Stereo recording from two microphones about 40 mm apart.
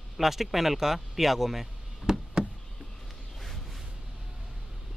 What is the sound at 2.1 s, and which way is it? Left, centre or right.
Knock, centre.